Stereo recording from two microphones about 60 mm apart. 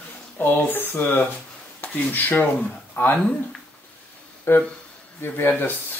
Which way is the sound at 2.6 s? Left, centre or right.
Centre.